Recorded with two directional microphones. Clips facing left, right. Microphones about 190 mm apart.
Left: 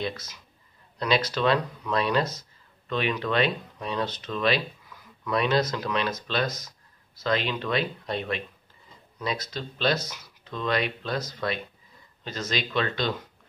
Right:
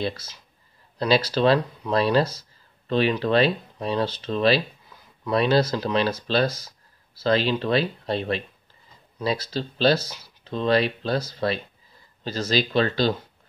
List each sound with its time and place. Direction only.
0.0 s speech: 30° right (ahead or behind)